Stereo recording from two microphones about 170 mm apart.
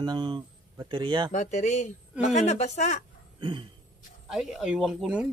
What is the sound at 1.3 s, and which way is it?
Speech, 45° left (ahead or behind).